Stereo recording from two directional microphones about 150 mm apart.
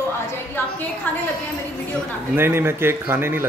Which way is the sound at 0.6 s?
15° left (ahead or behind).